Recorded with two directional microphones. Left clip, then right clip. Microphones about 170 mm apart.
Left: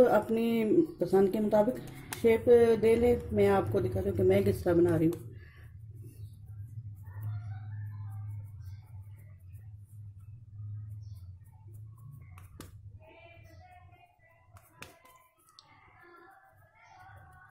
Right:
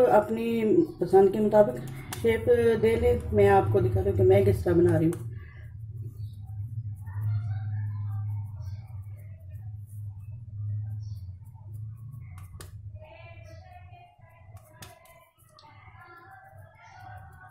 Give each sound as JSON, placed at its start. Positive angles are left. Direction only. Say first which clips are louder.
{"t": 0.0, "sound": "speech", "louder": "right 3 dB", "side_deg": 45}